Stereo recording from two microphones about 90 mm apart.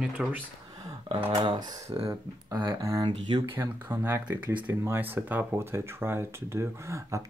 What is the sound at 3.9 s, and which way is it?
Speech, 25° right (ahead or behind).